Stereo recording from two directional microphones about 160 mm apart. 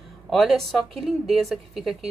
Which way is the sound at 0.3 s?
Centre (ahead or behind).